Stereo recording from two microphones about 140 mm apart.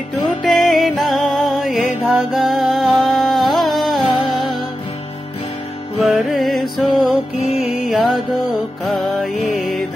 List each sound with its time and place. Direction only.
0.4 s music: centre (ahead or behind)
5.9 s music: centre (ahead or behind)